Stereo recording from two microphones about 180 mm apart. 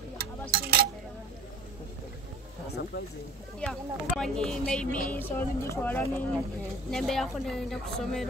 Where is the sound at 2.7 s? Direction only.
65° left (ahead or behind).